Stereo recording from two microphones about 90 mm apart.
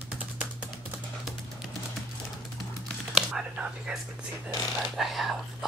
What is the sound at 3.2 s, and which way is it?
Speech, 10° right (ahead or behind).